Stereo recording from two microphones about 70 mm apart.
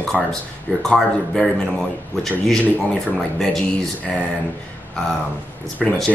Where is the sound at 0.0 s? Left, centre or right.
Centre.